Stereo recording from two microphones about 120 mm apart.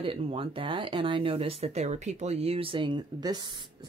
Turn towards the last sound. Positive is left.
turn(degrees=-40)  # may be behind; listen again after turning